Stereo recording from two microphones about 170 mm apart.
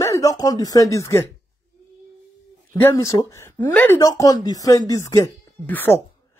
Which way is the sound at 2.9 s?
20° left (ahead or behind).